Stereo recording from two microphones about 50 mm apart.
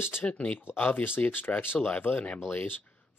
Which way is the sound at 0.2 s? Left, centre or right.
Left.